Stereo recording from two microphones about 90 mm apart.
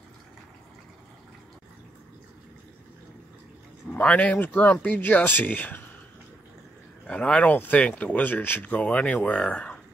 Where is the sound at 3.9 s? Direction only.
15° left (ahead or behind).